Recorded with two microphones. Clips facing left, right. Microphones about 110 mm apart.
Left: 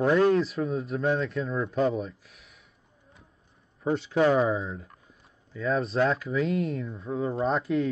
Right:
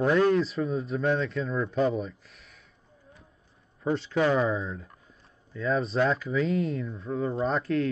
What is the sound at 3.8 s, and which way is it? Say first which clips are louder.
Speech: left 2 dB; 25° left (ahead or behind).